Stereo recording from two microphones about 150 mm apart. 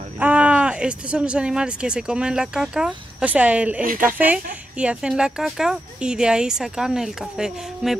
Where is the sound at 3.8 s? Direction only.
70° right (ahead or behind).